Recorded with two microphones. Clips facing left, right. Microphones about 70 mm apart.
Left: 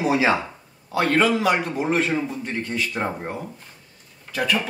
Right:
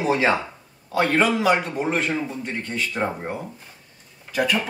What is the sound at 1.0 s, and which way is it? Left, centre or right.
Speech, centre.